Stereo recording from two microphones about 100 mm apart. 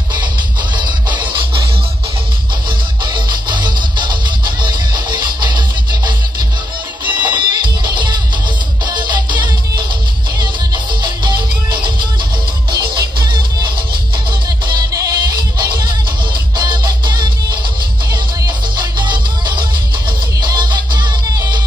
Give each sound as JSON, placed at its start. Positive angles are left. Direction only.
{"t": 0.7, "sound": "music", "side_deg": -50}
{"t": 3.1, "sound": "music", "side_deg": -50}
{"t": 14.7, "sound": "music", "side_deg": -40}